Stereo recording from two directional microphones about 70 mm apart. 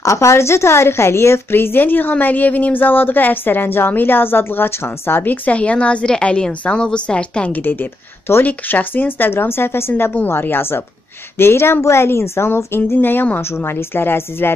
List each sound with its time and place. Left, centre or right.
0.0 s a woman's voice: left